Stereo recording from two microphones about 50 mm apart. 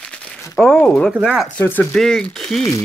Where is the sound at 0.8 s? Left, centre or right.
Centre.